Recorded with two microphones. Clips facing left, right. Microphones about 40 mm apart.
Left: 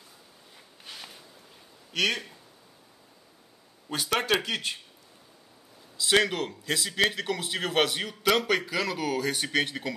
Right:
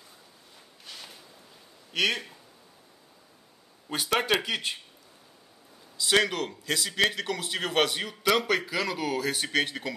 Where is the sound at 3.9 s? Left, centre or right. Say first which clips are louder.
Even; centre.